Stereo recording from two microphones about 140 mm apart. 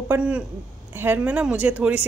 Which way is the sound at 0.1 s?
15° right (ahead or behind).